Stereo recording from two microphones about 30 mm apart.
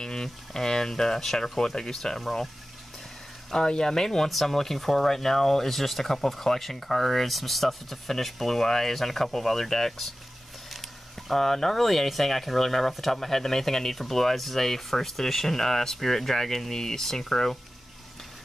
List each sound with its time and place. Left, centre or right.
0.0 s speech: centre
2.1 s speech: centre
3.5 s speech: left
4.3 s speech: centre